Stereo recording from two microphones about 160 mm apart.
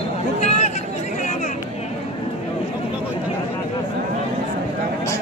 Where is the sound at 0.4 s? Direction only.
45° left (ahead or behind).